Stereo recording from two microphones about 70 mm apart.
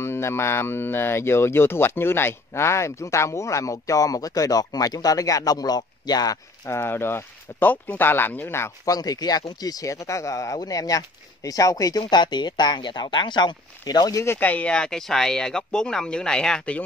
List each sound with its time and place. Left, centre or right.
0.0 s speech: left
6.7 s speech: left
8.8 s speech: left
14.4 s speech: left
14.7 s speech: centre